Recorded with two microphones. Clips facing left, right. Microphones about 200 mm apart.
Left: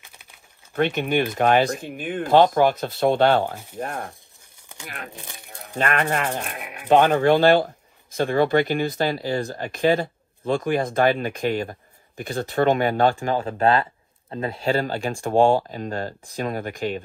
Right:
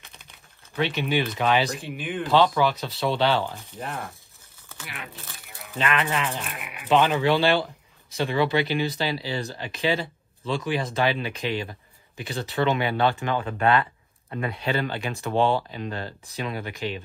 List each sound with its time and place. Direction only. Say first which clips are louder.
0.7 s speech: left 4 dB; 50° left (ahead or behind)
5.1 s speech: left 3 dB; 15° left (ahead or behind)
5.8 s speech: left 3 dB; 50° left (ahead or behind)
13.4 s speech: left 1 dB; 30° left (ahead or behind)
14.6 s speech: left 5 dB; 45° left (ahead or behind)